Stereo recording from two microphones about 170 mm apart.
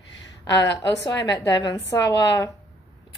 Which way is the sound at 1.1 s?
20° left (ahead or behind).